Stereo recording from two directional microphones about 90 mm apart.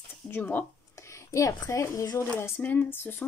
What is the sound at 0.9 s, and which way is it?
Speech, 35° left (ahead or behind).